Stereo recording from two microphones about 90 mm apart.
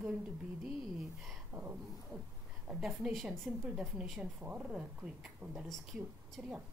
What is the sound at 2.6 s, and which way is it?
A woman's voice, 10° right (ahead or behind).